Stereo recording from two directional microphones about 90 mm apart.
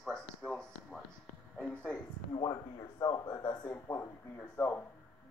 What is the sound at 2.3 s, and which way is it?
Speech, 55° left (ahead or behind).